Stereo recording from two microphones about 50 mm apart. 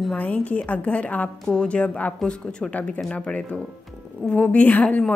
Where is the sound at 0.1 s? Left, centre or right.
Left.